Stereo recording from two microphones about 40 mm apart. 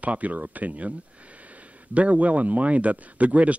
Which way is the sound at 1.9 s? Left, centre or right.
Right.